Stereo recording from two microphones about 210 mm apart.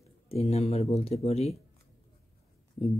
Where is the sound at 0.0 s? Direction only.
30° left (ahead or behind).